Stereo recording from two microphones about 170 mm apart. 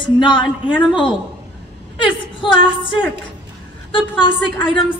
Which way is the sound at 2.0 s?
30° left (ahead or behind).